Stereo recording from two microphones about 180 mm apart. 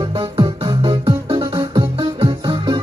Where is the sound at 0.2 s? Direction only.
25° right (ahead or behind).